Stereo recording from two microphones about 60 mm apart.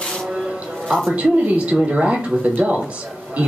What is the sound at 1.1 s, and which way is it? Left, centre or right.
Speech, right.